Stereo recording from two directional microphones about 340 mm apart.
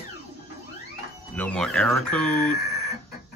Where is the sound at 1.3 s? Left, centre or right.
Centre.